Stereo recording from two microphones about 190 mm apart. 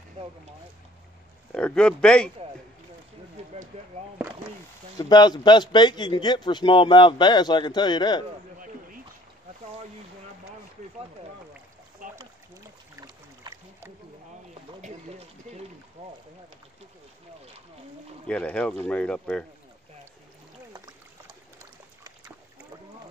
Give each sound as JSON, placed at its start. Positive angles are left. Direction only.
{"t": 1.5, "sound": "speech", "side_deg": 5}
{"t": 3.7, "sound": "speech", "side_deg": -35}
{"t": 4.9, "sound": "a man's voice", "side_deg": 20}
{"t": 13.0, "sound": "a sound", "side_deg": -20}
{"t": 14.8, "sound": "a sound", "side_deg": -35}
{"t": 16.0, "sound": "boat", "side_deg": -35}
{"t": 18.2, "sound": "speech", "side_deg": 5}